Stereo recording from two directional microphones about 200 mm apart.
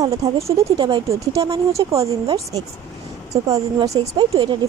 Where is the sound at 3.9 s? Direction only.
30° right (ahead or behind).